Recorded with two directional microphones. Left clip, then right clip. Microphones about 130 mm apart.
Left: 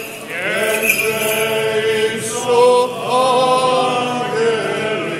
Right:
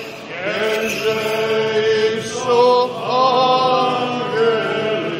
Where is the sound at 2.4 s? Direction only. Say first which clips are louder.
Left 2 dB; 30° right (ahead or behind).